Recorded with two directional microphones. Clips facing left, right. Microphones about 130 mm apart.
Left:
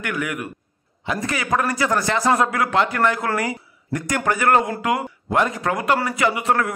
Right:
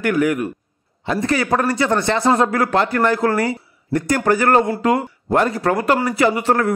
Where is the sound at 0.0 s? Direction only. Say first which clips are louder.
Right 9 dB; 35° right (ahead or behind).